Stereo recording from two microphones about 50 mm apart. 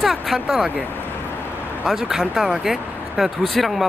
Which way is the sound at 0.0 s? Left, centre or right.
Centre.